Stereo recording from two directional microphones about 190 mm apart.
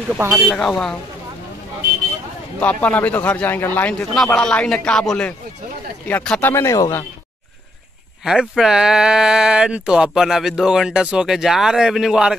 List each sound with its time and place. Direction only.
0.1 s speech: 10° right (ahead or behind)
0.5 s speech: 5° left (ahead or behind)
2.6 s a man's voice: 10° left (ahead or behind)
8.2 s speech: 5° right (ahead or behind)